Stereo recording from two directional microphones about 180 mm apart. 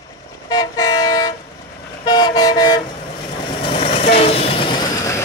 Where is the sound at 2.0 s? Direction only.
25° left (ahead or behind).